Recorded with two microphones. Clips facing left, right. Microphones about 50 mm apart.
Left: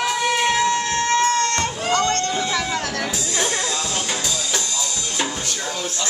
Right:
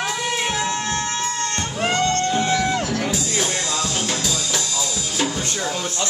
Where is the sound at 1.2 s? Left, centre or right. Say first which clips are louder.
Left 6 dB; left.